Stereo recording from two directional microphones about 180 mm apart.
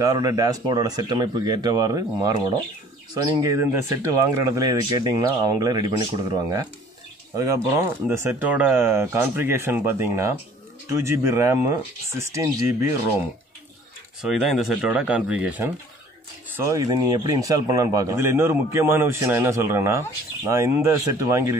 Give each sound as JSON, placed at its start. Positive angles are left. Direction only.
{"t": 0.0, "sound": "speech", "side_deg": -20}
{"t": 7.3, "sound": "speech", "side_deg": -15}
{"t": 14.2, "sound": "speech", "side_deg": 0}
{"t": 16.5, "sound": "speech", "side_deg": -15}